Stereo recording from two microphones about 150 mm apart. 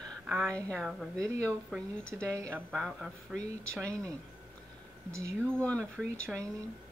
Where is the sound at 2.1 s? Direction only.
20° right (ahead or behind).